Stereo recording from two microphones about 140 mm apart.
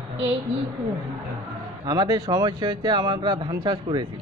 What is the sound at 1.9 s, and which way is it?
Speech, 30° right (ahead or behind).